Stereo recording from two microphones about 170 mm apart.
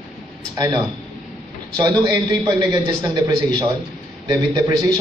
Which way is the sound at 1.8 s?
25° right (ahead or behind).